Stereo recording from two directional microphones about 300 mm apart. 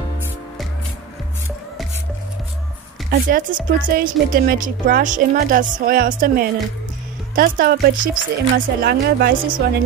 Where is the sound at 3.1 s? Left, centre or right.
Right.